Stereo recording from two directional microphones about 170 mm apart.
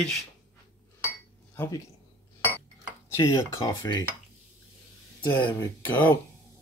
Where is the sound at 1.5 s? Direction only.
15° left (ahead or behind).